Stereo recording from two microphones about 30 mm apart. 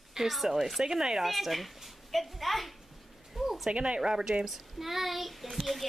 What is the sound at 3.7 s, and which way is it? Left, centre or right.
Speech, right.